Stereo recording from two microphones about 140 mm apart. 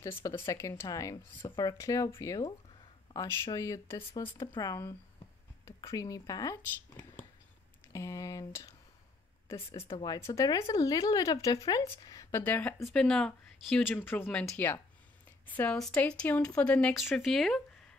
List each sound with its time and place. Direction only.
0.0 s speech: 20° left (ahead or behind)
4.1 s speech: 35° left (ahead or behind)
7.9 s a sound: 25° left (ahead or behind)
9.9 s speech: 30° left (ahead or behind)
12.7 s speech: centre (ahead or behind)
14.0 s speech: 15° left (ahead or behind)
15.4 s speech: 10° left (ahead or behind)